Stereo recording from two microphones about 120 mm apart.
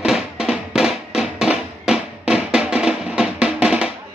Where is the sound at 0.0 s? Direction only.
5° right (ahead or behind).